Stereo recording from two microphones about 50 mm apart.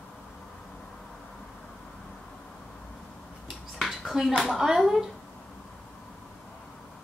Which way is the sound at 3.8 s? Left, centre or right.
Centre.